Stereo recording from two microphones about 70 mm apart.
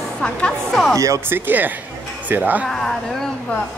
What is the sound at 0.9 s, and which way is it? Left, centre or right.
Speech, right.